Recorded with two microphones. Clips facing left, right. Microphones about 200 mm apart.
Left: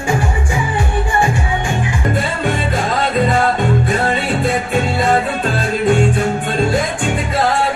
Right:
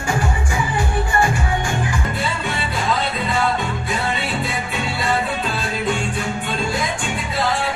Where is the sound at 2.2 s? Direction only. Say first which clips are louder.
Left 6 dB; 50° left (ahead or behind).